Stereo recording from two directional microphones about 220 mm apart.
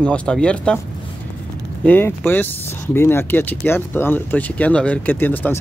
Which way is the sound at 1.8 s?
10° left (ahead or behind).